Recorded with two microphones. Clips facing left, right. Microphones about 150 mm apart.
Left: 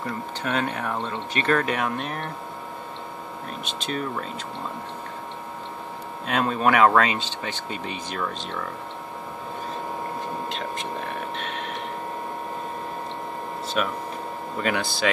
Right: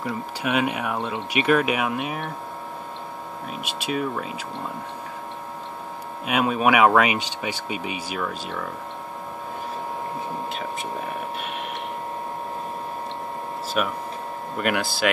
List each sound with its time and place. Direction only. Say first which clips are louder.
0.0 s speech: right 2 dB; 10° right (ahead or behind)
3.6 s speech: right 3 dB; 10° right (ahead or behind)
6.2 s speech: right 1 dB; 10° right (ahead or behind)
10.5 s speech: right 1 dB; 5° right (ahead or behind)
13.8 s speech: right 1 dB; 5° right (ahead or behind)